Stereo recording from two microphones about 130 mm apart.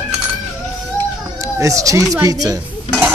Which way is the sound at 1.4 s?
25° right (ahead or behind).